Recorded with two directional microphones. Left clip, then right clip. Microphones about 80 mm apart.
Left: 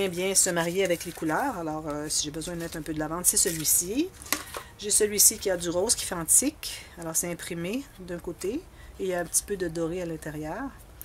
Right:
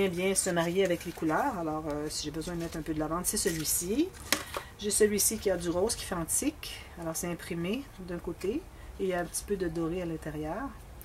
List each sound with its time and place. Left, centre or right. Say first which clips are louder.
0.0 s speech: left 3 dB; left